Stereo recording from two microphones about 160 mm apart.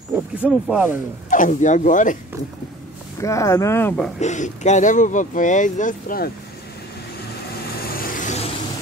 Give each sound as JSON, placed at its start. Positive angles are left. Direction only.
{"t": 0.1, "sound": "speech", "side_deg": -5}
{"t": 1.3, "sound": "speech", "side_deg": 55}
{"t": 3.2, "sound": "speech", "side_deg": 20}
{"t": 4.2, "sound": "speech", "side_deg": 45}
{"t": 7.9, "sound": "vehicle", "side_deg": 60}